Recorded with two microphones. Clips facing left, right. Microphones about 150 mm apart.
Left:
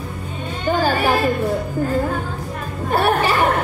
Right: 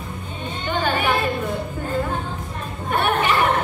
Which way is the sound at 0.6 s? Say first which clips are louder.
Left 4 dB; 35° left (ahead or behind).